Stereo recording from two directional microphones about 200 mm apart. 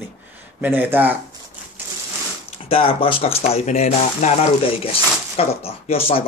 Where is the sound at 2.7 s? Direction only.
25° left (ahead or behind).